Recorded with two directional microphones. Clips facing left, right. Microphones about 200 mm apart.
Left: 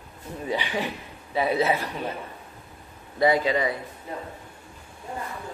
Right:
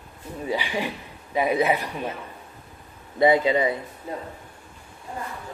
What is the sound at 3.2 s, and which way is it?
Speech, 20° right (ahead or behind).